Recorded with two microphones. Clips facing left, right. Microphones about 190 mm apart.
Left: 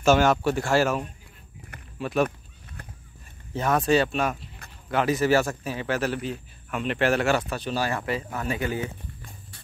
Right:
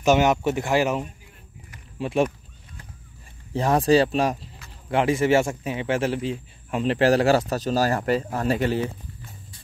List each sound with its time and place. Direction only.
0.0 s speech: 15° right (ahead or behind)
3.5 s a man's voice: 30° right (ahead or behind)